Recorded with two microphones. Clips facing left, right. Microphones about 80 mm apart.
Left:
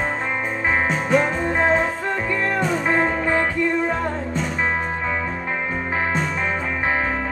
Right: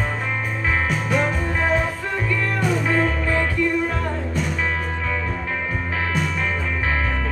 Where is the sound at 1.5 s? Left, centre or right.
Left.